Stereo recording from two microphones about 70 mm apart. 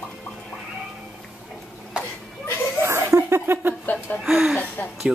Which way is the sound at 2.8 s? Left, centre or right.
Right.